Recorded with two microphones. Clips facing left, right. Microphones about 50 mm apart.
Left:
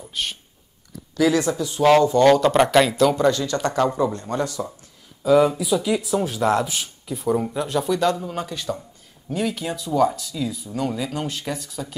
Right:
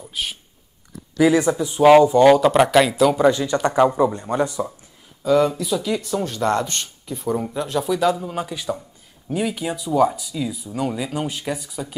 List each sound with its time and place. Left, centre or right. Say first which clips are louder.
0.0 s whispering: even; centre
1.1 s speech: right 3 dB; centre
3.3 s speech: right 3 dB; centre
5.2 s speech: left 1 dB; centre